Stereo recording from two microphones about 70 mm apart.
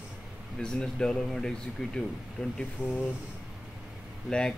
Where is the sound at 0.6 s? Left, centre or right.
Centre.